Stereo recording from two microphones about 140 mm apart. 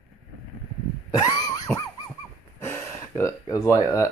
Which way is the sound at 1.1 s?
30° left (ahead or behind).